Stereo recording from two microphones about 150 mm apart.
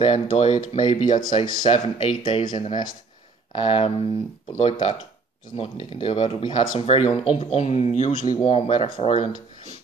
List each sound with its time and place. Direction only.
0.0 s speech: 45° left (ahead or behind)
1.0 s speech: 30° left (ahead or behind)